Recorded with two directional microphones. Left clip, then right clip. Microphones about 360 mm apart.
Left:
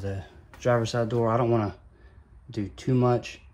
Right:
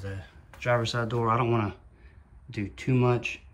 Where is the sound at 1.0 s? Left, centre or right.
Left.